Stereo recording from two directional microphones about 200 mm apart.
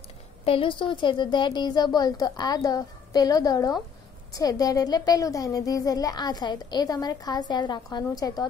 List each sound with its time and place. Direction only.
0.5 s a woman's voice: 25° left (ahead or behind)